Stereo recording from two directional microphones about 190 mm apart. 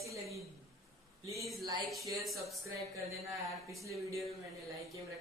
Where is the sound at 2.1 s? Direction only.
Centre (ahead or behind).